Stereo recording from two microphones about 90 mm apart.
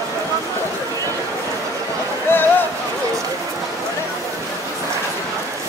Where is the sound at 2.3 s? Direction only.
25° left (ahead or behind).